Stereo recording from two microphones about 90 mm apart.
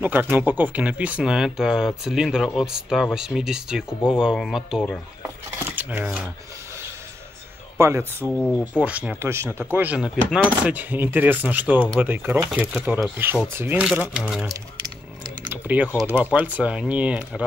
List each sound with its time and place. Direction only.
0.0 s speech: 20° right (ahead or behind); by 4.8 s 5° right (ahead or behind)
5.8 s speech: 20° right (ahead or behind)
7.8 s speech: 30° right (ahead or behind)
8.4 s speech: 15° left (ahead or behind)
8.7 s speech: 15° right (ahead or behind)
9.2 s speech: 30° right (ahead or behind)
9.9 s speech: 10° right (ahead or behind); by 13.7 s 30° right (ahead or behind)
14.1 s speech: 10° right (ahead or behind)
15.5 s typing: 20° right (ahead or behind)
16.1 s speech: 20° right (ahead or behind)